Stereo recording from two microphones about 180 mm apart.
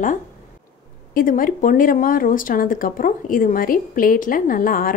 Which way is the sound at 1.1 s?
50° left (ahead or behind).